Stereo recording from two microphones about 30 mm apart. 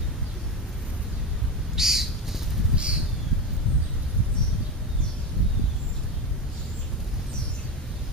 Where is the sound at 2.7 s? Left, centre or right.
Right.